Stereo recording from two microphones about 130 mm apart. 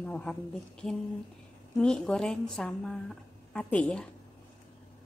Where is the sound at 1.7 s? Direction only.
5° left (ahead or behind).